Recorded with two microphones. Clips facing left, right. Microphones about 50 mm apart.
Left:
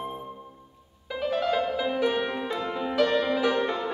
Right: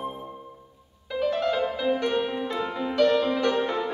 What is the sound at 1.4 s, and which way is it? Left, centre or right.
Music, centre.